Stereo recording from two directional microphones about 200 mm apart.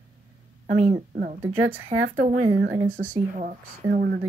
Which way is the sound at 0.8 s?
40° right (ahead or behind).